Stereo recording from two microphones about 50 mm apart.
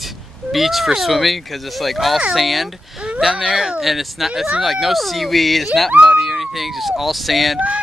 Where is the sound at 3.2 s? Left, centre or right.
Centre.